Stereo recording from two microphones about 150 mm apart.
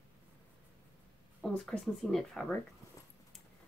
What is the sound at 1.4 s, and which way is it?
Speech, centre (ahead or behind).